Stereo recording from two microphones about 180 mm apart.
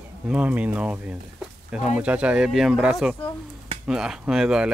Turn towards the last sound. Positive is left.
turn(degrees=-5)  # may be behind; listen again after turning